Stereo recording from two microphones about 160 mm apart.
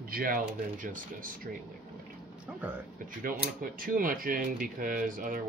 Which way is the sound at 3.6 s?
60° right (ahead or behind).